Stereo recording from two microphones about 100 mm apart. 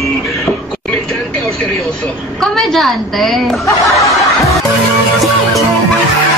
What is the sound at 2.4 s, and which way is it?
Speech, 5° left (ahead or behind).